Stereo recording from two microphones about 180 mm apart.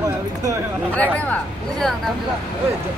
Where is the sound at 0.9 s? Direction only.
10° left (ahead or behind).